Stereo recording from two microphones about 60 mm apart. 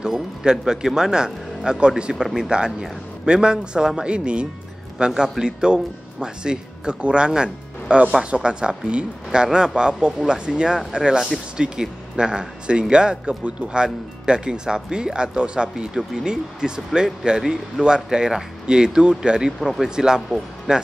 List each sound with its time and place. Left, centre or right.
0.0 s speech: centre
2.2 s speech: centre
2.5 s speech: centre